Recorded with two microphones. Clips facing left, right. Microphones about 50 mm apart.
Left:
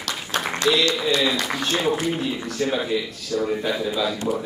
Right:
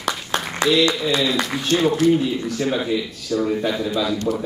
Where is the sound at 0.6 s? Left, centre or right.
Centre.